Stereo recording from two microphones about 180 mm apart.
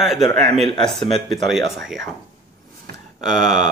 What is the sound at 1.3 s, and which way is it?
Speech, centre (ahead or behind).